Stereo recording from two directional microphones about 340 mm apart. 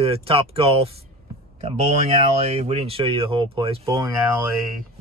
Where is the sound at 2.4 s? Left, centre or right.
Centre.